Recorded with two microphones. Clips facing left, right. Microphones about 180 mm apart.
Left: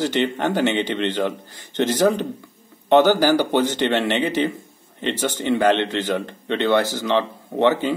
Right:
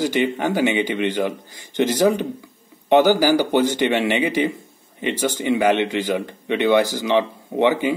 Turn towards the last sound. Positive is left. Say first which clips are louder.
# even
turn(degrees=-10)  # may be behind; listen again after turning